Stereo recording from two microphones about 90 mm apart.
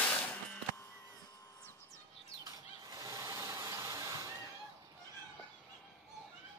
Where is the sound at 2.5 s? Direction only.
40° right (ahead or behind).